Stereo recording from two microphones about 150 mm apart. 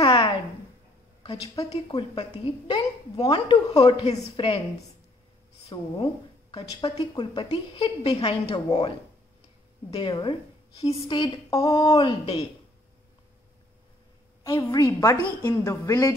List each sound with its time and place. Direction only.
0.0 s a sound: 35° left (ahead or behind)
1.2 s a woman's voice: 35° left (ahead or behind)
5.7 s a woman's voice: 30° left (ahead or behind)
9.9 s a woman's voice: 30° left (ahead or behind)
12.0 s a woman's voice: 35° left (ahead or behind)
14.4 s a woman's voice: 20° left (ahead or behind)